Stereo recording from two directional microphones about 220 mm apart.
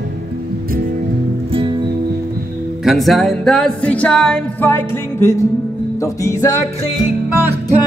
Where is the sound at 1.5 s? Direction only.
20° right (ahead or behind).